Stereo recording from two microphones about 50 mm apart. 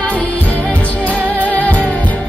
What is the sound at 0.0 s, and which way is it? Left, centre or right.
Music, left.